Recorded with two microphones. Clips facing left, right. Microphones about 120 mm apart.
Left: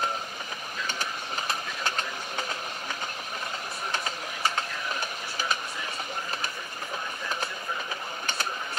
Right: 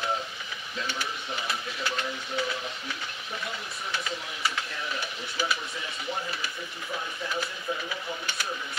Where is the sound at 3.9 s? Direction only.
45° left (ahead or behind).